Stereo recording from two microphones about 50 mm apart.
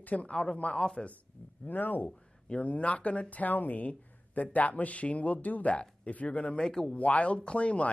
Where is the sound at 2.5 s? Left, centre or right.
Left.